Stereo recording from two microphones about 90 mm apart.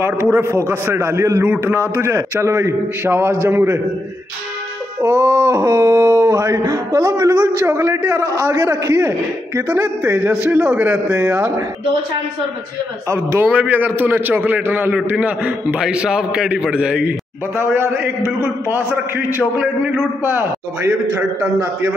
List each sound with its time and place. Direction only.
0.0 s a man's voice: 30° right (ahead or behind)
5.0 s a sound: 30° right (ahead or behind)
9.7 s a man's voice: 25° right (ahead or behind)
13.1 s a man's voice: 30° right (ahead or behind)
13.5 s a man's voice: 20° right (ahead or behind)